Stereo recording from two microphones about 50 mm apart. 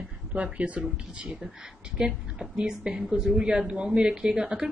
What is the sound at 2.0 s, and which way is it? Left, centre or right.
A woman's voice, centre.